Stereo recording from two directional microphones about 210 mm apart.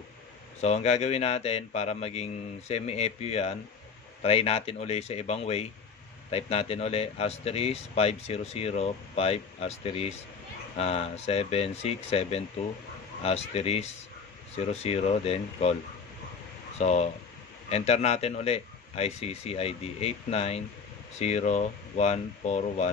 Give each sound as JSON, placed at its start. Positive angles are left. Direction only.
{"t": 0.6, "sound": "a man's voice", "side_deg": 30}
{"t": 16.7, "sound": "a man's voice", "side_deg": 30}